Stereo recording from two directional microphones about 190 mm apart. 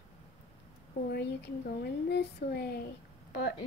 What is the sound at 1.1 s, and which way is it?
A woman's voice, 60° left (ahead or behind).